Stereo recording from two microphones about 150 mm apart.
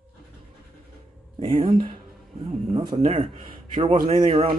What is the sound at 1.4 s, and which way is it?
Speech, 40° right (ahead or behind).